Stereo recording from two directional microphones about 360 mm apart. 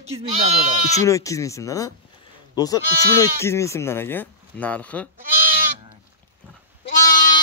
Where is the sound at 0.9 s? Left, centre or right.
Centre.